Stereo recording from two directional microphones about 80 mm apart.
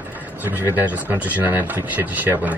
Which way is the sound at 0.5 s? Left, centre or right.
Right.